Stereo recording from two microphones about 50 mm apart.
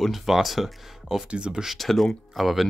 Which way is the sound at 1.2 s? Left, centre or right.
Centre.